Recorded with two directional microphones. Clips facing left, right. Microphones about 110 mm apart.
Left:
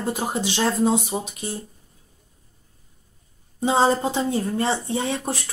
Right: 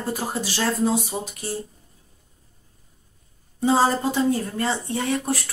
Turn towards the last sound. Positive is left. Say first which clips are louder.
# right 1 dB
turn(degrees=25)  # may be behind; listen again after turning